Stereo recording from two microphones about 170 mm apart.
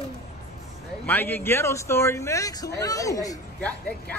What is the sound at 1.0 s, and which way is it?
Speech, 10° left (ahead or behind).